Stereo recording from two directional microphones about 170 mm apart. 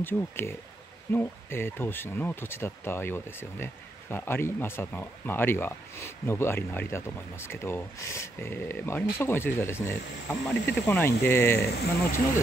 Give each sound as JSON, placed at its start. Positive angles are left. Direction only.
{"t": 0.0, "sound": "speech", "side_deg": 15}
{"t": 10.5, "sound": "speech", "side_deg": 80}
{"t": 10.9, "sound": "speech", "side_deg": 10}
{"t": 11.6, "sound": "speech", "side_deg": 70}